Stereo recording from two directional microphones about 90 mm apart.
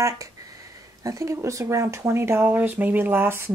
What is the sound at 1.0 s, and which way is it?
Speech, 40° right (ahead or behind).